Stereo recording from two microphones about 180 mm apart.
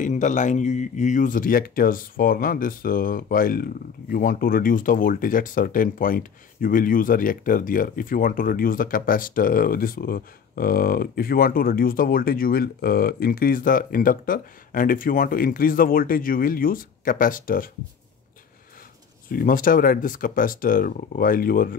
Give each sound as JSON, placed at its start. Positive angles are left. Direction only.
{"t": 0.0, "sound": "speech", "side_deg": 45}
{"t": 19.2, "sound": "speech", "side_deg": 50}